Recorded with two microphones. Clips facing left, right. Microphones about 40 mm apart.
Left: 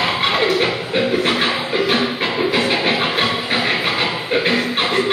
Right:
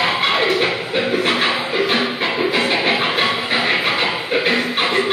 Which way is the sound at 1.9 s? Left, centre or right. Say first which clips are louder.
Even; centre.